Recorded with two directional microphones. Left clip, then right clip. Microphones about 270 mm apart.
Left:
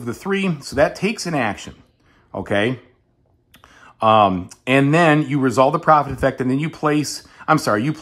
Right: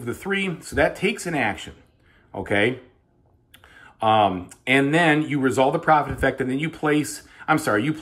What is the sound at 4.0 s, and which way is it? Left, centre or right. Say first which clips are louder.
Speech: left 5 dB; centre.